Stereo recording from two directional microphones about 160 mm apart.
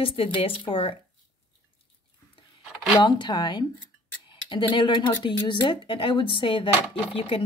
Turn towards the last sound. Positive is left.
turn(degrees=35)  # may be behind; listen again after turning